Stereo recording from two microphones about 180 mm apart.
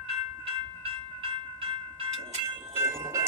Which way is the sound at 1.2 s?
30° right (ahead or behind).